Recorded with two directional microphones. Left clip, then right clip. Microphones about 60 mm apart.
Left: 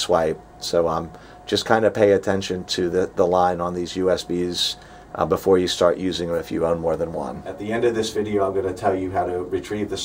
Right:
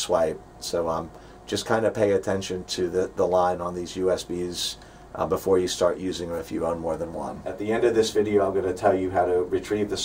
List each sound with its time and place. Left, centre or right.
0.0 s speech: left
7.6 s speech: centre